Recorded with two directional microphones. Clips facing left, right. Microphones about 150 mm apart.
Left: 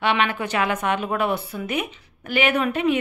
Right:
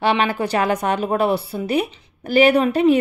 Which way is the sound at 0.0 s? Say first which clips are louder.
Right 3 dB; 35° right (ahead or behind).